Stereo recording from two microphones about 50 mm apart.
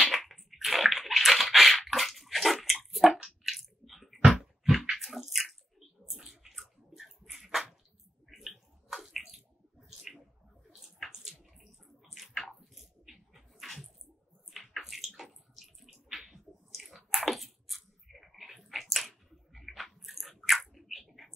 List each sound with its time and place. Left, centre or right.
0.1 s bathtub: centre
3.4 s squish: centre
4.9 s bathtub: centre
7.3 s a sound: centre
8.3 s bathtub: centre
9.3 s a sound: centre
10.7 s bathtub: centre